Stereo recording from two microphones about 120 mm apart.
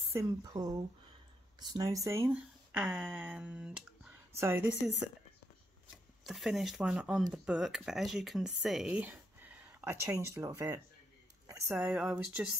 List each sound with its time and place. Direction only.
0.1 s speech: 25° right (ahead or behind)
2.3 s speech: 10° right (ahead or behind)
4.4 s speech: 20° right (ahead or behind)
4.6 s speech: 5° right (ahead or behind)
6.2 s speech: centre (ahead or behind)